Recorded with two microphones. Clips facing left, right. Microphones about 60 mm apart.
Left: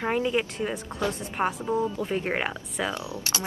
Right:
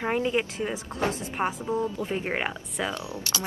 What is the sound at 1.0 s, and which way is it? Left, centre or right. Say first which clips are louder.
Speech: right 1 dB; right.